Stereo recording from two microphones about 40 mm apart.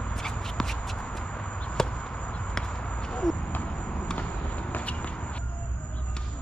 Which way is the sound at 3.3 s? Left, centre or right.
Centre.